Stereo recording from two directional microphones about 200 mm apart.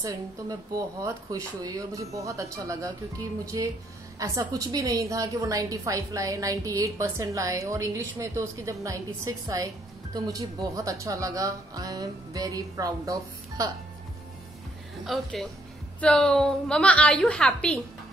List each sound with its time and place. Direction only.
0.0 s a woman's voice: 20° right (ahead or behind)
15.0 s a woman's voice: centre (ahead or behind)